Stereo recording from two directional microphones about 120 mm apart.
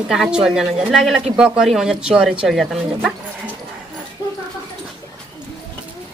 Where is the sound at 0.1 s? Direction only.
5° right (ahead or behind).